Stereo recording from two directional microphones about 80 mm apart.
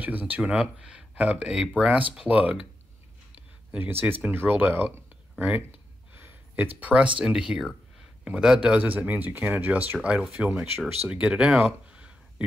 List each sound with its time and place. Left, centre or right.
0.0 s speech: right
3.7 s speech: right
6.1 s a sound: right
7.2 s speech: centre
10.4 s speech: centre
11.9 s a sound: centre